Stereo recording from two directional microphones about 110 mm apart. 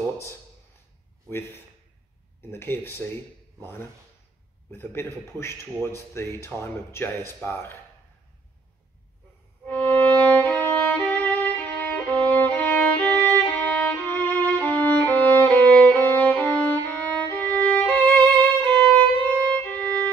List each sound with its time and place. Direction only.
2.5 s speech: 20° left (ahead or behind)
4.6 s speech: 25° left (ahead or behind)
9.7 s violin: 15° left (ahead or behind)
18.8 s music: 15° left (ahead or behind)